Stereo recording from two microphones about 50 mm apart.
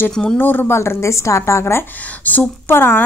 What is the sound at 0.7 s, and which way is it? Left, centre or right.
A woman's voice, left.